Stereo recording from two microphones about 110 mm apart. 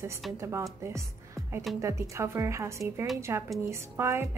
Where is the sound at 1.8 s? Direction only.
25° right (ahead or behind).